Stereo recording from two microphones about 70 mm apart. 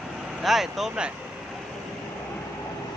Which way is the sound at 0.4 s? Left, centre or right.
Centre.